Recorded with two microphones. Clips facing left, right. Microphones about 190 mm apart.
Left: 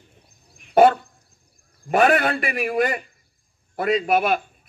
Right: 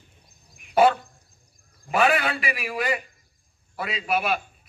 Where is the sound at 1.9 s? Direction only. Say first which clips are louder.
Left 4 dB; 50° left (ahead or behind).